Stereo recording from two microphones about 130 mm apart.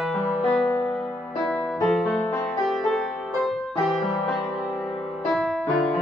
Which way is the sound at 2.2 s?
20° left (ahead or behind).